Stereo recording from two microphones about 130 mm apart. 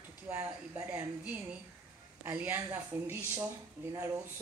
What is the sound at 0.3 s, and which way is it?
A woman's voice, 15° right (ahead or behind).